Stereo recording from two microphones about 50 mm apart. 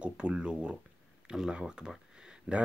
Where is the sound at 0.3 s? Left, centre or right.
Centre.